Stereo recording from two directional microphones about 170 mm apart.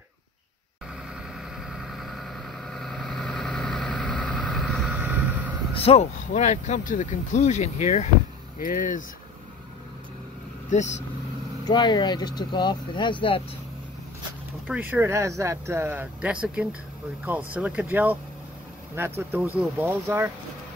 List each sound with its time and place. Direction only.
1.3 s vehicle: centre (ahead or behind)
5.8 s speech: 35° left (ahead or behind)
8.5 s speech: 55° left (ahead or behind)
10.7 s speech: 45° left (ahead or behind)
11.6 s speech: 25° left (ahead or behind)
14.7 s speech: 10° right (ahead or behind)